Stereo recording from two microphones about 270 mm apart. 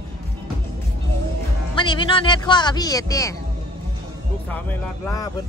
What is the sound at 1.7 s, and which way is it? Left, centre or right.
Speech, centre.